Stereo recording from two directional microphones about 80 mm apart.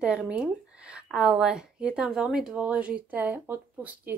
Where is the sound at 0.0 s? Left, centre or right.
Centre.